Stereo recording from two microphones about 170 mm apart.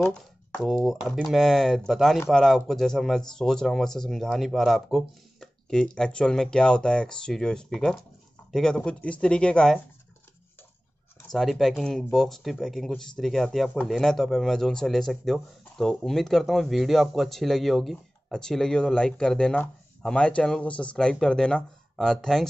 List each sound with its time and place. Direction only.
0.0 s speech: 5° left (ahead or behind)
11.1 s speech: 5° left (ahead or behind)